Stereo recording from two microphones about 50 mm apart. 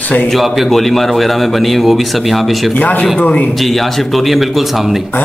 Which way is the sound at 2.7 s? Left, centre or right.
Left.